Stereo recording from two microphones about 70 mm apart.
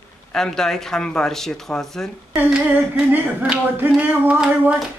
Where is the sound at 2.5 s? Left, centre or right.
Centre.